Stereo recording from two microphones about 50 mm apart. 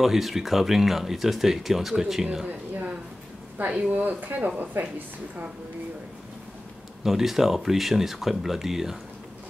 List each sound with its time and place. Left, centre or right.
0.0 s speech: centre
2.4 s a sound: right
3.9 s a woman's voice: right
7.0 s speech: centre